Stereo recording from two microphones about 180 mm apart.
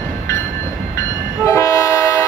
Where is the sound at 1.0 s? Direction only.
15° left (ahead or behind).